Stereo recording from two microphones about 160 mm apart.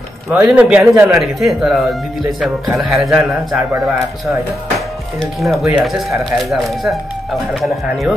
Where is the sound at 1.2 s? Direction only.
Centre (ahead or behind).